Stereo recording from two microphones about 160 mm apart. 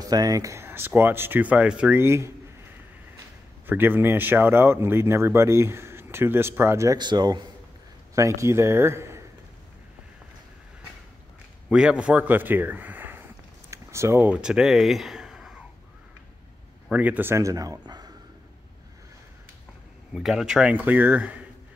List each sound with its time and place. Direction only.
0.0 s a man's voice: 25° right (ahead or behind)
3.6 s a man's voice: 15° right (ahead or behind)
11.7 s a man's voice: 5° right (ahead or behind)
16.9 s a man's voice: 10° right (ahead or behind); by 18.1 s 25° right (ahead or behind)
20.2 s a man's voice: 5° right (ahead or behind)